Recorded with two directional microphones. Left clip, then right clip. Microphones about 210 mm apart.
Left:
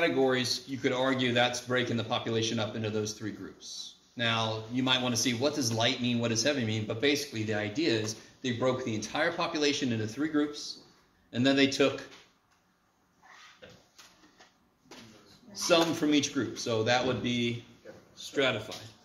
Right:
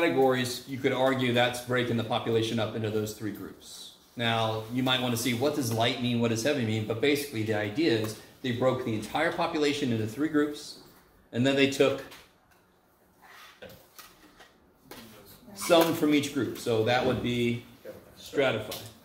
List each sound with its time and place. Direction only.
0.0 s speech: 45° left (ahead or behind)
15.6 s speech: 40° left (ahead or behind)